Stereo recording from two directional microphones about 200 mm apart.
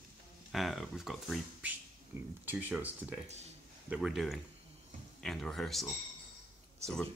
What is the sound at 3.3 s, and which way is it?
Speech, 35° right (ahead or behind).